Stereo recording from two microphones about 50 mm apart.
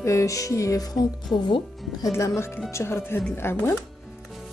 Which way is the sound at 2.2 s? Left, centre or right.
Left.